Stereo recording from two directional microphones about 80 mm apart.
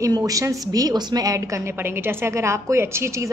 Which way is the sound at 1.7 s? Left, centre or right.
Right.